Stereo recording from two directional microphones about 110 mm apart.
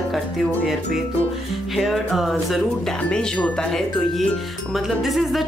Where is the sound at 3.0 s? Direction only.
10° left (ahead or behind).